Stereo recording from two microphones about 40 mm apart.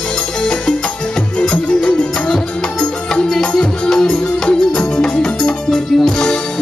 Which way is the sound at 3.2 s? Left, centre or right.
Centre.